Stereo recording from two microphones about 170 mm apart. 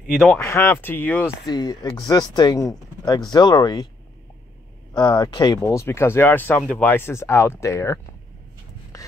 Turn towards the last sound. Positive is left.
turn(degrees=20)  # may be behind; listen again after turning